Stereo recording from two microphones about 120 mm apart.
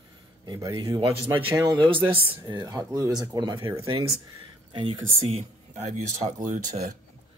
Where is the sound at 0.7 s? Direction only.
45° right (ahead or behind).